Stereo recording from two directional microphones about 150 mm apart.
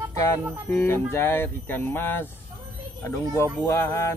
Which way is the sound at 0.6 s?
15° left (ahead or behind).